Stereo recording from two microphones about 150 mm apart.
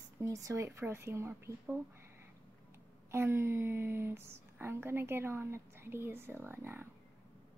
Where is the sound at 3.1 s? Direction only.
15° right (ahead or behind).